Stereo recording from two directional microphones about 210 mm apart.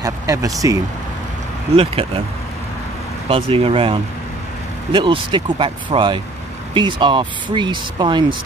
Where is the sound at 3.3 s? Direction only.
25° right (ahead or behind).